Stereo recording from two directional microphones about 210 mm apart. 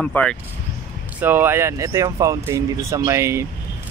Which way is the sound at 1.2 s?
10° right (ahead or behind).